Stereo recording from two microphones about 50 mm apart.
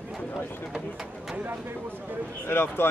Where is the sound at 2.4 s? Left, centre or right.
Left.